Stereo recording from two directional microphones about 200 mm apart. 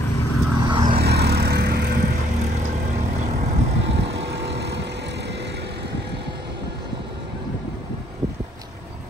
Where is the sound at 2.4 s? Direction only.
35° right (ahead or behind).